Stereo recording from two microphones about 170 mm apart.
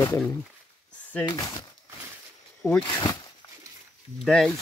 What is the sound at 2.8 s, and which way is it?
Speech, 25° left (ahead or behind).